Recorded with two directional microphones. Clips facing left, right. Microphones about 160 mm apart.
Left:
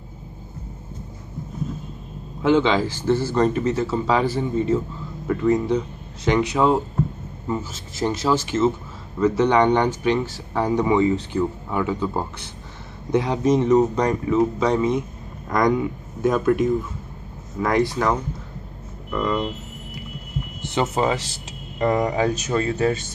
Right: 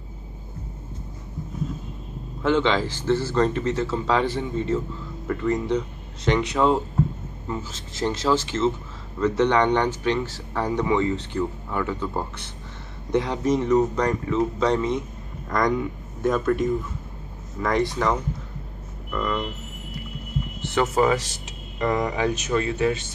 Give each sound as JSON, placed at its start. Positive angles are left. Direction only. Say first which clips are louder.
{"t": 2.4, "sound": "speech", "louder": "left 3 dB", "side_deg": 10}
{"t": 16.2, "sound": "speech", "louder": "left 3 dB", "side_deg": 10}
{"t": 20.6, "sound": "speech", "louder": "right 1 dB", "side_deg": 20}